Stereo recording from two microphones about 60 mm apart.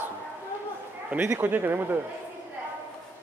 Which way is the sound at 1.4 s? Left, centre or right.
Right.